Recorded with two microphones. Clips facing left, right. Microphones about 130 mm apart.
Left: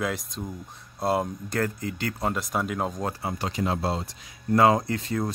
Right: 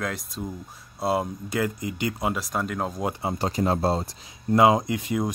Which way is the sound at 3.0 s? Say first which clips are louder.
Right 2 dB; 20° right (ahead or behind).